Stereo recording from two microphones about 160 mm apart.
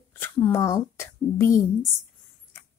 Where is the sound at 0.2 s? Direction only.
15° left (ahead or behind).